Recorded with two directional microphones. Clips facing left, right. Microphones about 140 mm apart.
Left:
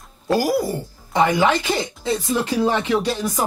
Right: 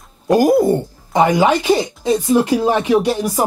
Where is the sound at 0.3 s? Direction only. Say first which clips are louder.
Right 7 dB; 20° right (ahead or behind).